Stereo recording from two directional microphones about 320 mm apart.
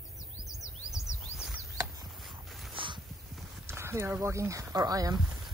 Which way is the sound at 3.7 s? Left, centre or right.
Centre.